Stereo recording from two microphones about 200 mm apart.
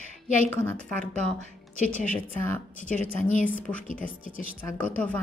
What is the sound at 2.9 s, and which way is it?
Speech, 40° left (ahead or behind).